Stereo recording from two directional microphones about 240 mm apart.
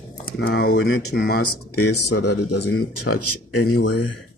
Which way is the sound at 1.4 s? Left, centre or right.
Left.